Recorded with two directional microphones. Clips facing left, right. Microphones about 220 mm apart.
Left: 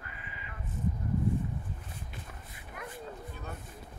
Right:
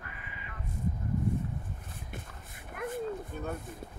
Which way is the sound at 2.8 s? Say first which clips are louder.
Right 8 dB; 45° right (ahead or behind).